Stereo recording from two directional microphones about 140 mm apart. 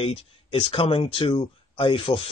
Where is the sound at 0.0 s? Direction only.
40° left (ahead or behind).